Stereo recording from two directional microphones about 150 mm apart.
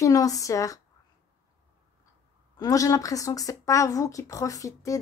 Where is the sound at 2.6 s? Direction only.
20° left (ahead or behind).